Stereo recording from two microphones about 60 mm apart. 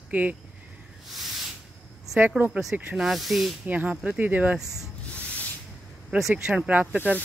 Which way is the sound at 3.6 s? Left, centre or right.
Right.